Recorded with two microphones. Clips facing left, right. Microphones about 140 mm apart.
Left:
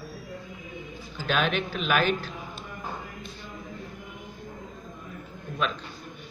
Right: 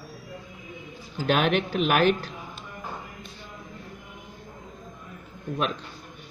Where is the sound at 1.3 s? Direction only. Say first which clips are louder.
Right 4 dB; 65° right (ahead or behind).